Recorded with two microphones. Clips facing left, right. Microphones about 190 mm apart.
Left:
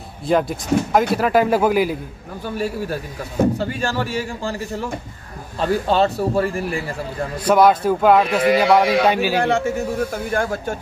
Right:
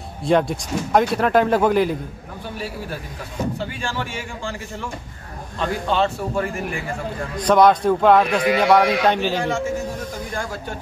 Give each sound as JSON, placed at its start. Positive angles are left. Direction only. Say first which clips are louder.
{"t": 0.2, "sound": "a man's voice", "louder": "even", "side_deg": 0}
{"t": 3.5, "sound": "speech", "louder": "left 5 dB", "side_deg": 40}
{"t": 7.3, "sound": "a man's voice", "louder": "even", "side_deg": 5}
{"t": 9.4, "sound": "a man's voice", "louder": "left 4 dB", "side_deg": 65}